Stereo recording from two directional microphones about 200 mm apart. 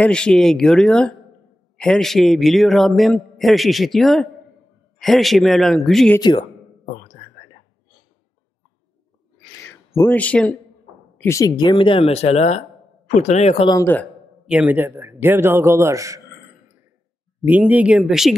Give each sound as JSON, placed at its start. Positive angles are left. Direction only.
{"t": 0.0, "sound": "a man's voice", "side_deg": 5}
{"t": 6.1, "sound": "speech", "side_deg": 20}
{"t": 6.9, "sound": "whispering", "side_deg": 40}
{"t": 9.6, "sound": "a sound", "side_deg": 10}
{"t": 11.1, "sound": "speech", "side_deg": 15}
{"t": 13.7, "sound": "speech", "side_deg": 10}
{"t": 14.4, "sound": "a man's voice", "side_deg": -5}
{"t": 17.5, "sound": "a man's voice", "side_deg": -5}